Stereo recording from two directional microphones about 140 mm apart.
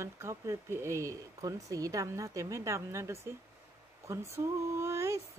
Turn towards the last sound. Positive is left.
turn(degrees=-20)  # may be behind; listen again after turning